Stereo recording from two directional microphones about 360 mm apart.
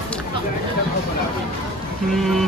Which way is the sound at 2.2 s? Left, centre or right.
Centre.